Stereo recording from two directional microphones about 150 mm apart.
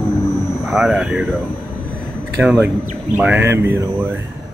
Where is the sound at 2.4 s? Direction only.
10° right (ahead or behind).